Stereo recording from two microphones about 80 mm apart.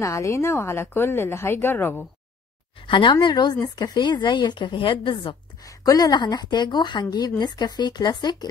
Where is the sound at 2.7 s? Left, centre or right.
Left.